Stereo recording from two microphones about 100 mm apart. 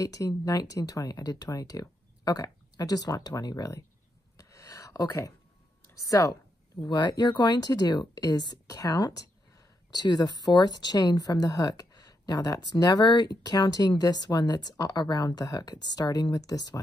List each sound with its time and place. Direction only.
0.0 s speech: 35° left (ahead or behind)
4.4 s a sound: 35° left (ahead or behind)
5.9 s speech: 35° left (ahead or behind)